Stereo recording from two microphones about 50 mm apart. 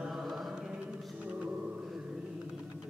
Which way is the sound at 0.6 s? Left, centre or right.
Centre.